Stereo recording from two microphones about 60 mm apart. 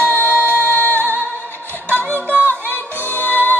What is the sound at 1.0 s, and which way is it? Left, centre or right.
Music, right.